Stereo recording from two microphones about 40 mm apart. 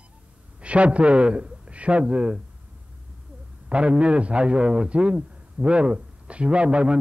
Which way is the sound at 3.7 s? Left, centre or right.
Right.